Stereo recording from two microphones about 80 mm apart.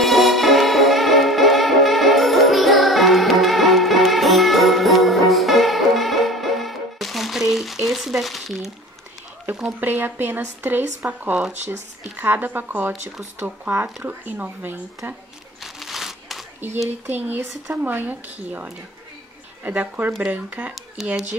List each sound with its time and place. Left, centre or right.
0.0 s music: centre
9.8 s speech: right
15.6 s crumpling: centre
17.0 s speech: right
21.0 s speech: centre